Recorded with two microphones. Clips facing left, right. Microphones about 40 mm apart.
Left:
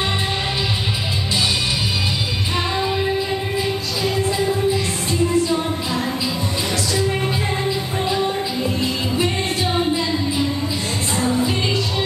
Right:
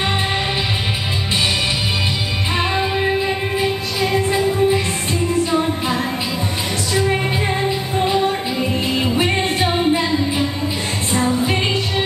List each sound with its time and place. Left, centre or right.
2.7 s music: right
8.0 s music: right
11.1 s music: right